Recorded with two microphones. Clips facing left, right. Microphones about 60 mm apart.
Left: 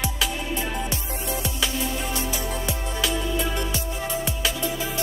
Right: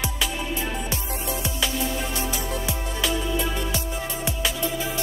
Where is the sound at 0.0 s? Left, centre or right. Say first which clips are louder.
Even; centre.